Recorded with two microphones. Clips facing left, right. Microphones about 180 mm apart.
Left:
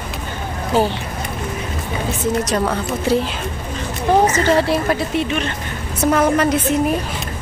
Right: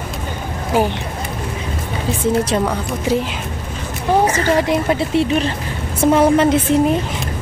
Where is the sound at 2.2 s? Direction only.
30° right (ahead or behind).